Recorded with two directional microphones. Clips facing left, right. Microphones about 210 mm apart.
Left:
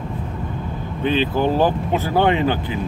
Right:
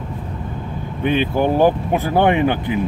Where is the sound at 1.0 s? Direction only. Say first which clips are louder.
Right 1 dB; 15° right (ahead or behind).